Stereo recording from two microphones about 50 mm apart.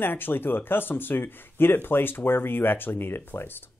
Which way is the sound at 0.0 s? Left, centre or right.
Left.